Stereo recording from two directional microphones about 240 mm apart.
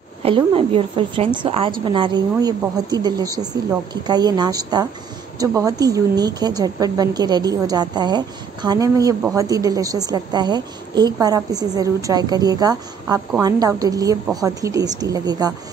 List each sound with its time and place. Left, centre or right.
0.2 s a woman's voice: right